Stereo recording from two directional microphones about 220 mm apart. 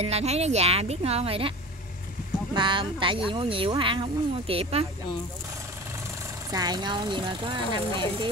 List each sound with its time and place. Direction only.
0.0 s speech: 30° right (ahead or behind)
2.5 s speech: 20° right (ahead or behind)
6.5 s speech: 20° right (ahead or behind)